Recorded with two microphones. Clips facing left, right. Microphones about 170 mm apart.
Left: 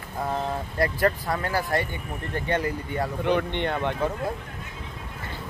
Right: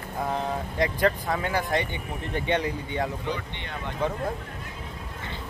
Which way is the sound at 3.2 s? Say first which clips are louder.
Left 9 dB; 65° left (ahead or behind).